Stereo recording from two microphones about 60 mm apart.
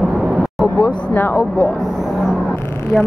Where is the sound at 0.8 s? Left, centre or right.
Left.